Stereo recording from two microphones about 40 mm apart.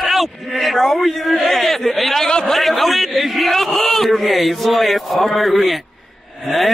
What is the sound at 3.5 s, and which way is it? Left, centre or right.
A man's voice, centre.